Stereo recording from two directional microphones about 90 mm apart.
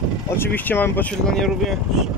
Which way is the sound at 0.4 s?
25° left (ahead or behind).